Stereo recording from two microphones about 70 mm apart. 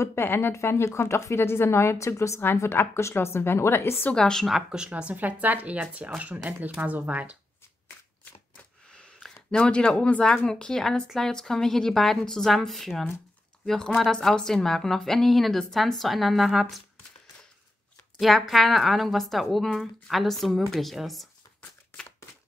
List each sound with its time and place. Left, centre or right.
0.0 s a woman's voice: left
4.1 s speech: centre
4.6 s speech: centre
9.5 s a woman's voice: centre
18.5 s a woman's voice: centre